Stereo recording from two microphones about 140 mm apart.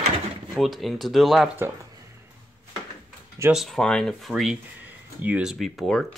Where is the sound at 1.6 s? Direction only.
25° right (ahead or behind).